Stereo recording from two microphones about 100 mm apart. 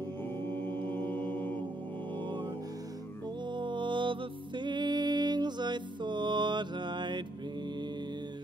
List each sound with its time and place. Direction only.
0.5 s mantra: 20° left (ahead or behind)
3.4 s music: 50° right (ahead or behind)